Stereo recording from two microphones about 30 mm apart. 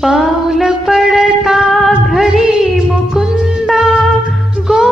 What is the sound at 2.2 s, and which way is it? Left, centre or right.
Music, centre.